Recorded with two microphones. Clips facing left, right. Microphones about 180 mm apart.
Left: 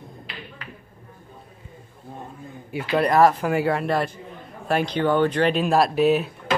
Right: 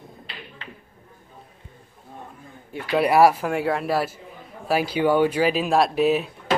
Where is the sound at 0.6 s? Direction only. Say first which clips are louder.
Left 1 dB; 25° right (ahead or behind).